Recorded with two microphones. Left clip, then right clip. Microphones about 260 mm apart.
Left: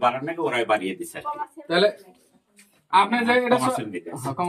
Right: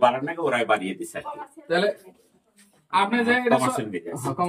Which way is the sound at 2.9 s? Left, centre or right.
Centre.